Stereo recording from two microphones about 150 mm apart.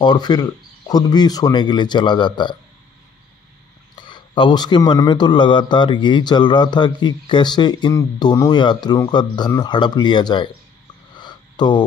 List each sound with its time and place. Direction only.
0.0 s a man's voice: 30° left (ahead or behind)
3.9 s a man's voice: 30° left (ahead or behind)
11.1 s a sound: 30° left (ahead or behind)